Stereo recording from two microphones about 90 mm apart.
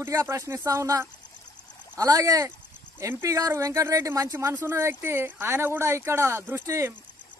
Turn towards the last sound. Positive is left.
turn(degrees=-30)  # may be behind; listen again after turning